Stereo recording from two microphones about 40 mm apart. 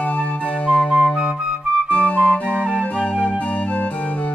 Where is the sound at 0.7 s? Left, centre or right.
Left.